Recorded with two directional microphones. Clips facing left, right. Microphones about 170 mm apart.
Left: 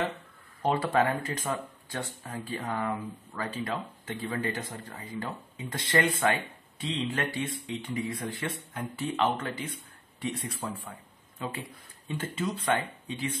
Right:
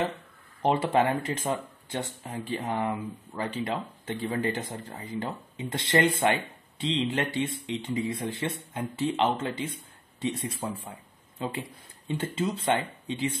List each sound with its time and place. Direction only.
0.7 s speech: 25° right (ahead or behind)